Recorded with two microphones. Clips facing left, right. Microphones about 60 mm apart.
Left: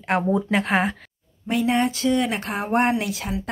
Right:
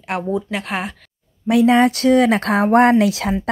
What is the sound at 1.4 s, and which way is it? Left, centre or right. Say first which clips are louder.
Speech: right 8 dB; right.